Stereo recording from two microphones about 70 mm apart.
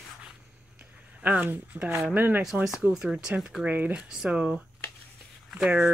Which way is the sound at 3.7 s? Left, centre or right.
Right.